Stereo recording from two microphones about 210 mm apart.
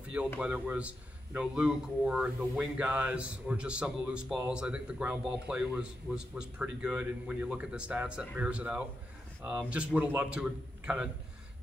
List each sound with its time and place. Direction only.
0.4 s a man's voice: 5° right (ahead or behind)